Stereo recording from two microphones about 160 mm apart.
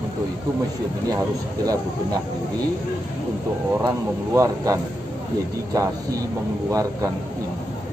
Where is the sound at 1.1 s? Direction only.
25° right (ahead or behind).